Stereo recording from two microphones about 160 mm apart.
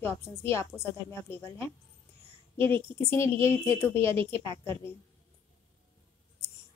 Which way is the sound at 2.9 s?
15° left (ahead or behind).